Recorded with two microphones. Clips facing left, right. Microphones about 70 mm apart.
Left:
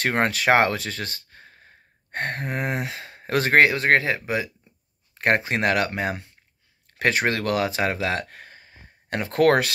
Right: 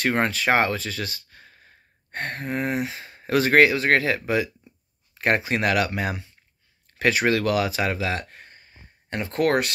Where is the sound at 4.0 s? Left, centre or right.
Left.